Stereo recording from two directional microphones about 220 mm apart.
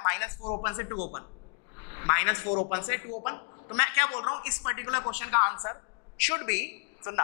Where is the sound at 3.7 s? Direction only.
15° left (ahead or behind).